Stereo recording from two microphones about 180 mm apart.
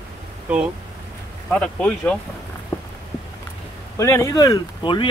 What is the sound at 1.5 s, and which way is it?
Speech, 5° left (ahead or behind).